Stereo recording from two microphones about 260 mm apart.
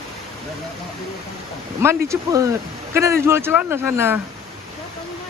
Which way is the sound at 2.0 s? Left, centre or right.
Centre.